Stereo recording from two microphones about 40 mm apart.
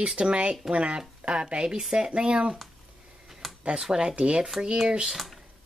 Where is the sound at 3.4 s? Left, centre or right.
Centre.